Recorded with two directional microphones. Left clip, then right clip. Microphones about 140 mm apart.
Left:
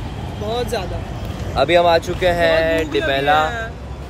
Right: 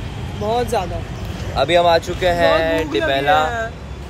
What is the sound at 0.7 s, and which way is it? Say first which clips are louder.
Speech: right 3 dB; 50° right (ahead or behind).